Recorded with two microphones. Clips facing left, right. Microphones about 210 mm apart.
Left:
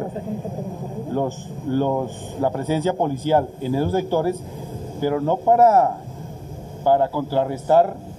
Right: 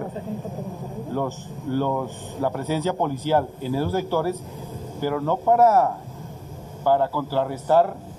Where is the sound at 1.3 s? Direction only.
50° left (ahead or behind).